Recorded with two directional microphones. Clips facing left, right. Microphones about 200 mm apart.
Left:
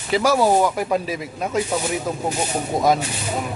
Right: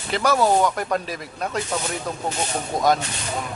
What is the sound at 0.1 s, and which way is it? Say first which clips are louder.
Speech: left 2 dB; centre (ahead or behind).